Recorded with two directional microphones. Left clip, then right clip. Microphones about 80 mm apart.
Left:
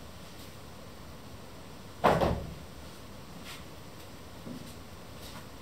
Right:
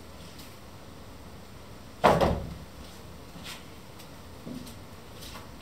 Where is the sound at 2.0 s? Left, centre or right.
Right.